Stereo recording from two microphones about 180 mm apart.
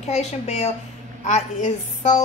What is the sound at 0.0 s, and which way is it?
A woman's voice, 40° left (ahead or behind).